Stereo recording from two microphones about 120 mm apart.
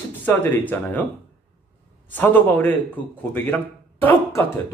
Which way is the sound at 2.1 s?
15° left (ahead or behind).